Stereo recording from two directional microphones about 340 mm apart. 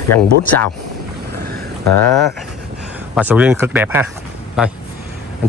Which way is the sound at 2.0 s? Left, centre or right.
Centre.